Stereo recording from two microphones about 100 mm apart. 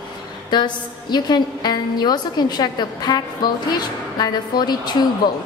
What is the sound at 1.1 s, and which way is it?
A woman's voice, 45° left (ahead or behind).